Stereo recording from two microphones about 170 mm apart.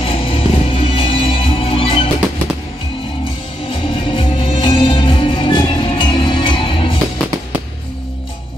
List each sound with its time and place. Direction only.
0.0 s music: 35° left (ahead or behind)
3.7 s music: 35° left (ahead or behind)